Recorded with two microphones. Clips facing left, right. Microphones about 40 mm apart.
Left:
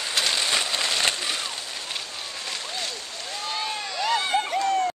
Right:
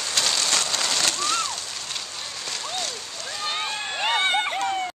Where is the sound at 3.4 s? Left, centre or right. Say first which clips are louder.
Right 2 dB; right.